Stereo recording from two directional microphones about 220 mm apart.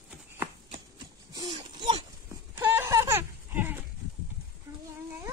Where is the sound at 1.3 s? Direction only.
20° right (ahead or behind).